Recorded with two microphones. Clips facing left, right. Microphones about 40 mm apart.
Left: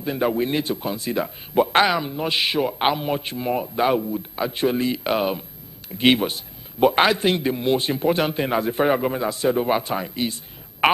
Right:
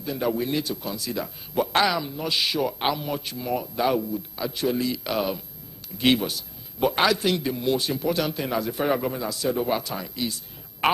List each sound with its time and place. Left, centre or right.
0.0 s a man's voice: left